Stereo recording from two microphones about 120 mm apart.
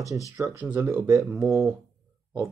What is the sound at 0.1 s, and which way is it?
Speech, 25° right (ahead or behind).